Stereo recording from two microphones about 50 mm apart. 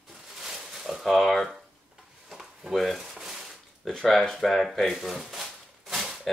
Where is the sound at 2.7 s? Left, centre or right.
Centre.